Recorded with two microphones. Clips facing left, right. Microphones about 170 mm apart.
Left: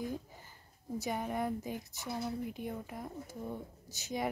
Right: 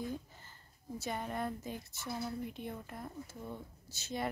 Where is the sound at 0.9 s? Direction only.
15° left (ahead or behind).